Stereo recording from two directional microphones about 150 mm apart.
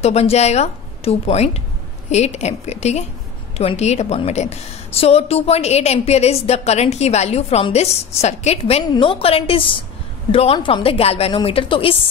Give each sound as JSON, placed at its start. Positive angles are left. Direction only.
{"t": 0.0, "sound": "a woman's voice", "side_deg": 45}